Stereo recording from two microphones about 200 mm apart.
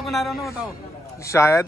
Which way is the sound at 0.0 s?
Centre (ahead or behind).